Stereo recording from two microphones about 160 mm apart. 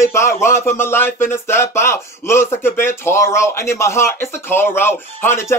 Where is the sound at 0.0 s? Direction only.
15° left (ahead or behind).